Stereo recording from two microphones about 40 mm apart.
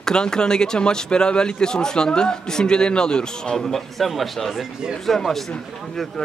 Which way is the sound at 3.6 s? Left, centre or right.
Centre.